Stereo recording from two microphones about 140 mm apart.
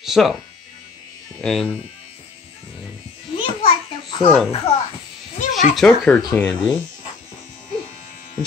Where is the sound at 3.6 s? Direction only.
40° left (ahead or behind).